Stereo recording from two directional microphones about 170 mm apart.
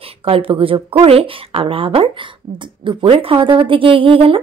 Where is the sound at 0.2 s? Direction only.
35° right (ahead or behind).